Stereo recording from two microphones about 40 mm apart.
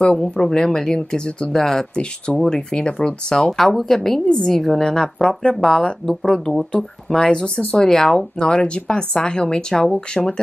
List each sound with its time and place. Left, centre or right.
0.0 s speech: centre
1.6 s speech: centre
2.7 s a woman's voice: left
3.5 s speech: centre
7.2 s a woman's voice: left
8.4 s a woman's voice: left